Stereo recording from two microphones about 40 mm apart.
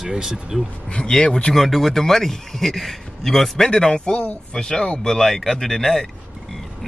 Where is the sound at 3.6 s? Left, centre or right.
Left.